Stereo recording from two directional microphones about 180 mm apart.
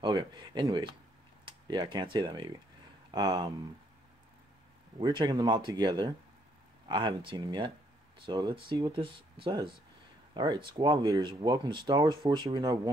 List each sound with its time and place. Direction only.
0.0 s speech: 25° right (ahead or behind)
5.0 s speech: 25° right (ahead or behind)